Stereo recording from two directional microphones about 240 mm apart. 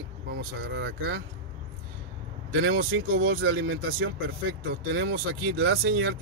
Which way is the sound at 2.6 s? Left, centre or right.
Right.